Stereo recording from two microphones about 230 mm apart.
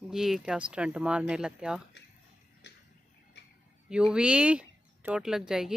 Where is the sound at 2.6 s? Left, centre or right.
Left.